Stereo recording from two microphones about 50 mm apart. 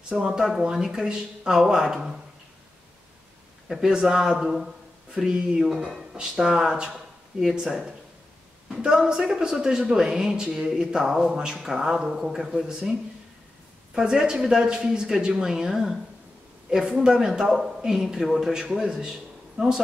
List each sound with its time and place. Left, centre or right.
0.2 s speech: centre
3.6 s speech: centre
6.1 s speech: centre
13.9 s a man's voice: centre